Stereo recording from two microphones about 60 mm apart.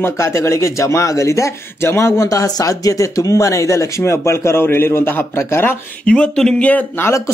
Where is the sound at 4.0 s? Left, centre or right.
Left.